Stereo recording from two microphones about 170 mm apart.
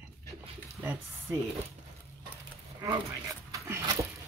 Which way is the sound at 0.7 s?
15° right (ahead or behind).